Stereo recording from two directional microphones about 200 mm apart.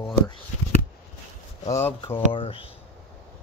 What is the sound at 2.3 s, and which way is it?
Speech, 25° left (ahead or behind).